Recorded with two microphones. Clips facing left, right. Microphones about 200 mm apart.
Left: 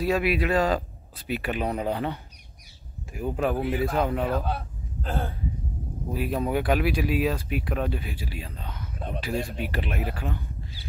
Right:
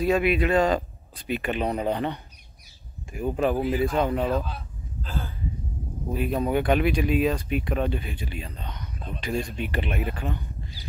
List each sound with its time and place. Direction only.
0.0 s speech: centre (ahead or behind)
4.5 s a sound: 55° left (ahead or behind)
6.1 s speech: 5° left (ahead or behind)